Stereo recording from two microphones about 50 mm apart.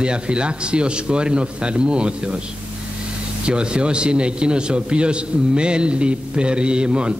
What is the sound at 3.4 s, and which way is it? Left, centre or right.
A man's voice, centre.